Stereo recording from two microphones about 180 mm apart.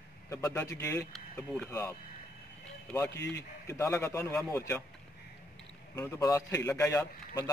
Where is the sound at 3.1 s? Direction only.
75° left (ahead or behind).